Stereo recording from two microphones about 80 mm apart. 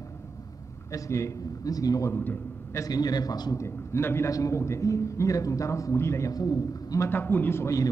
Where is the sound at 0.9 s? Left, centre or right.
Left.